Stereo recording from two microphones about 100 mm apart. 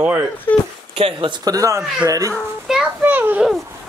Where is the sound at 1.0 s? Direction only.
65° right (ahead or behind).